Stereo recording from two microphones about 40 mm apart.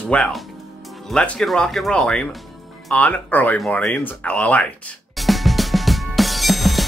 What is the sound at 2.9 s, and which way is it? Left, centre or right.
Speech, left.